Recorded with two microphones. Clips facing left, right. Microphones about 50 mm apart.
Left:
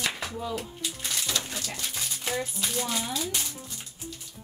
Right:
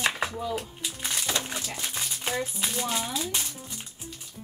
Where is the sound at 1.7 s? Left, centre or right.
Right.